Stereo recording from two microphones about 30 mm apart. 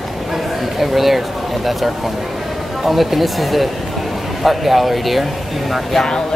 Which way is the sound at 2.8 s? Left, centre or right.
Centre.